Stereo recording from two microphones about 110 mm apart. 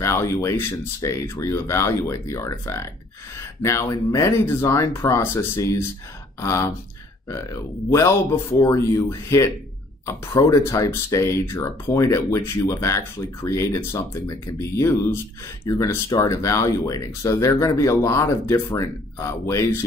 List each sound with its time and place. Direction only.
0.0 s speech: 25° left (ahead or behind)
7.9 s speech: 25° left (ahead or behind)